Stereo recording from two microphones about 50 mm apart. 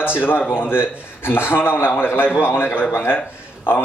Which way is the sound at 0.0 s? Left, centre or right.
Left.